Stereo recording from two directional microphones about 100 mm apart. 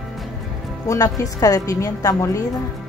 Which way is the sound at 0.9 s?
35° left (ahead or behind).